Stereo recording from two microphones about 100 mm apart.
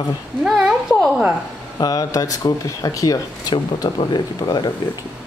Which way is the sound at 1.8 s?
40° left (ahead or behind).